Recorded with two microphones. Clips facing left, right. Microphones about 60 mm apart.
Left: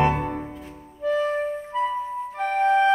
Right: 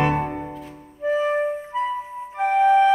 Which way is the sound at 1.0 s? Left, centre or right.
Right.